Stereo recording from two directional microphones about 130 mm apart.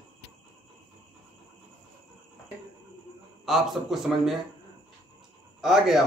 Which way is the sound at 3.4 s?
Centre (ahead or behind).